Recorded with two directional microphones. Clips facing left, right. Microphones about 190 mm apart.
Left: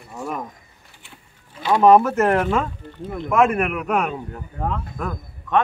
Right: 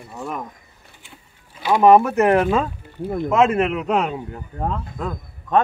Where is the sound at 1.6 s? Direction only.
10° right (ahead or behind).